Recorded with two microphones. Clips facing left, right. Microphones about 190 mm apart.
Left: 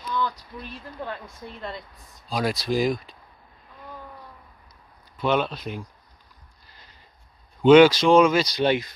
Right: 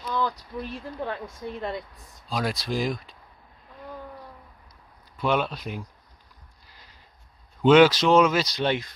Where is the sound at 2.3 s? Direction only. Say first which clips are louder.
Left 3 dB; centre (ahead or behind).